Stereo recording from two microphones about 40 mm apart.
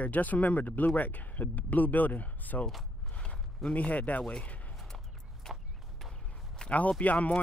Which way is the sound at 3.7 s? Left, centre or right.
Left.